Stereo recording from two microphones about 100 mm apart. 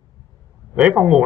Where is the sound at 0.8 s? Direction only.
10° right (ahead or behind).